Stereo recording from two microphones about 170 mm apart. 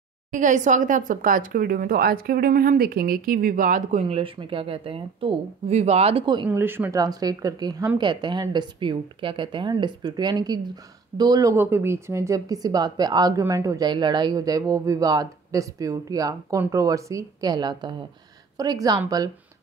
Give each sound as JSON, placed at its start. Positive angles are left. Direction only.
{"t": 0.3, "sound": "speech", "side_deg": -45}
{"t": 6.5, "sound": "a woman's voice", "side_deg": -10}